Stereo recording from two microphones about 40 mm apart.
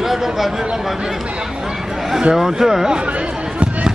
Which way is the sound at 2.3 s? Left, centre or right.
Centre.